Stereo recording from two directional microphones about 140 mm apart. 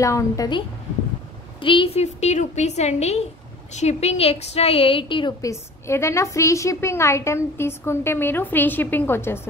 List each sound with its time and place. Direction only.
0.0 s a woman's voice: 25° left (ahead or behind)
1.6 s a woman's voice: 35° left (ahead or behind)
2.1 s a woman's voice: 55° left (ahead or behind); by 5.3 s 35° left (ahead or behind)
5.4 s a woman's voice: 20° left (ahead or behind)